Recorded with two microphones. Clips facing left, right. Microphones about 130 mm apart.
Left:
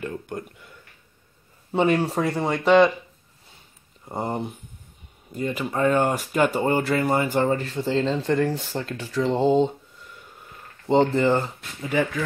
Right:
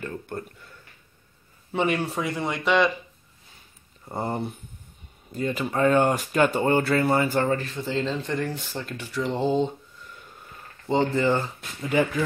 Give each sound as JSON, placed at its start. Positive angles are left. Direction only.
{"t": 0.0, "sound": "a sound", "side_deg": 15}
{"t": 1.7, "sound": "speech", "side_deg": 30}
{"t": 4.0, "sound": "speech", "side_deg": 15}
{"t": 10.9, "sound": "speech", "side_deg": 30}
{"t": 11.8, "sound": "speech", "side_deg": 0}